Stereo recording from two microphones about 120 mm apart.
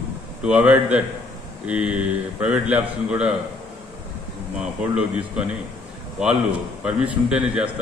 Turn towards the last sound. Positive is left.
turn(degrees=-10)  # may be behind; listen again after turning